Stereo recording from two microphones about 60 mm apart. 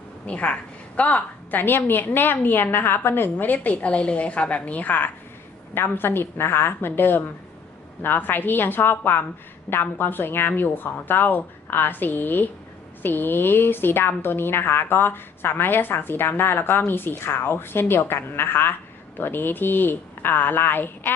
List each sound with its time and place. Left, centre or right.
0.3 s a woman's voice: left